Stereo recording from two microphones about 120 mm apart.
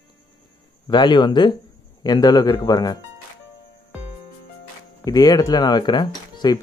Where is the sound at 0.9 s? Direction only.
40° left (ahead or behind).